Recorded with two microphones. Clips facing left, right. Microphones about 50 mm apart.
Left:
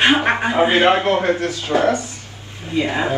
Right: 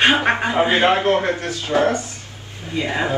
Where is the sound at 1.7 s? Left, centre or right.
Right.